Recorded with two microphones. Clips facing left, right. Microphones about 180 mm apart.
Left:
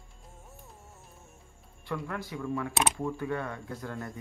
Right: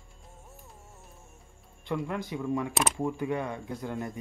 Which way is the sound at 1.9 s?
20° right (ahead or behind).